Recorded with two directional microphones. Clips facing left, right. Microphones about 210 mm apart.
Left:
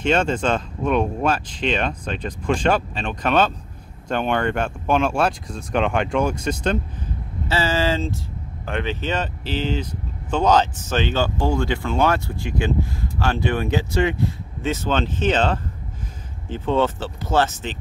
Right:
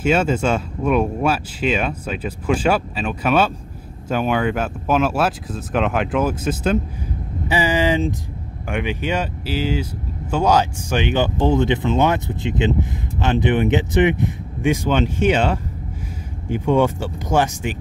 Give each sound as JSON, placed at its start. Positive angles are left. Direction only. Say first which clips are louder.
{"t": 0.0, "sound": "speech", "louder": "right 2 dB", "side_deg": -5}